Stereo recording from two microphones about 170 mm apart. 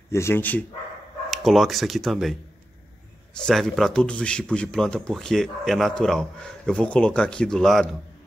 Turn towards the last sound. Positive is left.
turn(degrees=0)  # may be behind; listen again after turning